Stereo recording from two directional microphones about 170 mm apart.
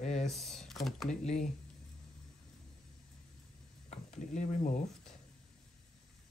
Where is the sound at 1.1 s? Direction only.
40° left (ahead or behind).